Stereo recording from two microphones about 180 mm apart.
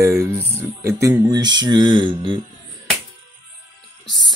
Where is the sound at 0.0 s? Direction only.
15° right (ahead or behind).